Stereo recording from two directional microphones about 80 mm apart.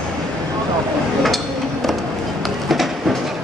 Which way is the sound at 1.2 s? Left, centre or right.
Centre.